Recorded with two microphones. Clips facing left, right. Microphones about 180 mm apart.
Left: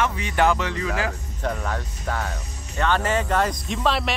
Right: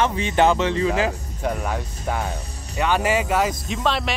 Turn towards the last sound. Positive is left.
turn(degrees=0)  # may be behind; listen again after turning